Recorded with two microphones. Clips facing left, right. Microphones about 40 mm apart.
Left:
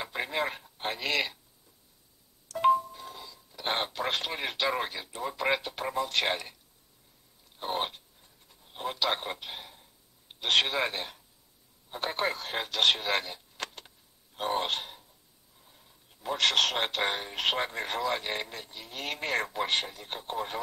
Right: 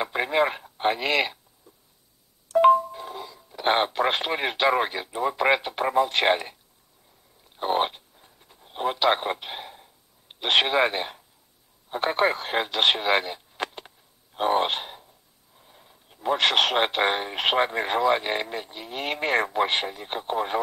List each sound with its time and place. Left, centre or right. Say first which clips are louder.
0.0 s speech: right 8 dB; right
2.4 s speech: right 7 dB; right
7.5 s a sound: right 8 dB; right
11.9 s speech: right 8 dB; right